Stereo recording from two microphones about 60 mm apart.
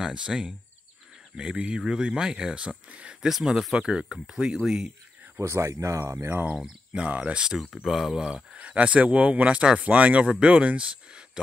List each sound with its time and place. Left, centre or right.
0.0 s speech: centre
3.3 s speech: centre
5.4 s speech: right
6.1 s speech: right
6.5 s speech: centre
7.7 s speech: centre
8.5 s speech: right